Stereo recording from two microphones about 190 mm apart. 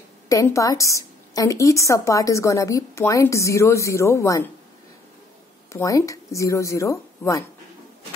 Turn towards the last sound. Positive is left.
turn(degrees=15)  # may be behind; listen again after turning